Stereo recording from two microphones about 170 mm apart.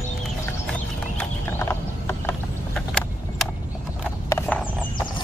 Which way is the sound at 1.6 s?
15° left (ahead or behind).